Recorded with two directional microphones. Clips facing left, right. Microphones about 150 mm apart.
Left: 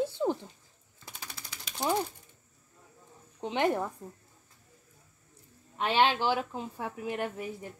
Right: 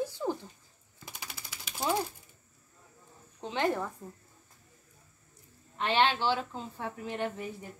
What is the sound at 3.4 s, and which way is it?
Speech, 15° left (ahead or behind).